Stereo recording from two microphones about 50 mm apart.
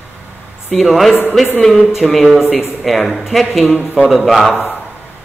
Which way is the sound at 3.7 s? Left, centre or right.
Centre.